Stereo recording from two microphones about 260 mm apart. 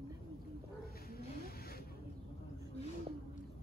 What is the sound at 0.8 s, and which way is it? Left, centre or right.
Snake, left.